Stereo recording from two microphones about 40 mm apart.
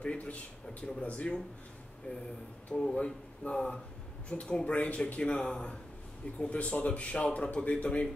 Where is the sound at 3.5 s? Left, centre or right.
Left.